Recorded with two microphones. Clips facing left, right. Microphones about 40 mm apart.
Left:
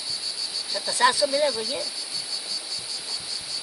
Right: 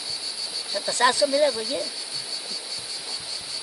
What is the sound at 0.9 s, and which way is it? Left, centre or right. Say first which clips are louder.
Speech: right 1 dB; centre.